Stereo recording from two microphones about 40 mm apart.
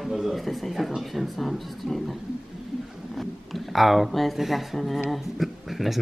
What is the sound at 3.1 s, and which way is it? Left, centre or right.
Speech, centre.